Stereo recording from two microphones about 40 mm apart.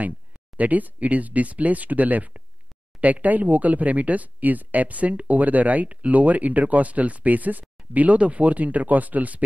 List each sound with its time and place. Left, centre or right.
0.6 s speech: right